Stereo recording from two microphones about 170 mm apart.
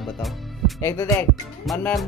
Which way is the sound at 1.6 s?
Centre (ahead or behind).